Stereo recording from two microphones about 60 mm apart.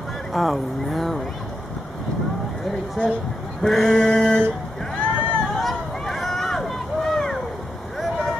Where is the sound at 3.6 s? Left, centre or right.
Centre.